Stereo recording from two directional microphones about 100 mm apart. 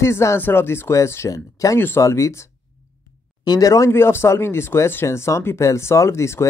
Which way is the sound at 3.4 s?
40° left (ahead or behind).